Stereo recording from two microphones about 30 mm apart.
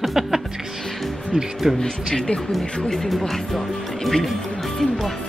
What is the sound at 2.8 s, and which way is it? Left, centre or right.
Speech, centre.